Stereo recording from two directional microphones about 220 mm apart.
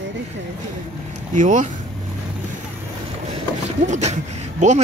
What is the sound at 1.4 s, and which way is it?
Speech, 35° right (ahead or behind).